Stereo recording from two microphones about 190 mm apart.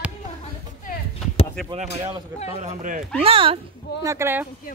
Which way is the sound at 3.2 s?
30° right (ahead or behind).